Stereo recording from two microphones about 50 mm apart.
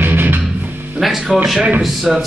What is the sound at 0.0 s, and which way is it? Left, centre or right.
Music, right.